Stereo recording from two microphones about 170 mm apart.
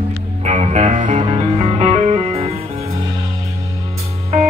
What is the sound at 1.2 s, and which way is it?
Music, 35° right (ahead or behind).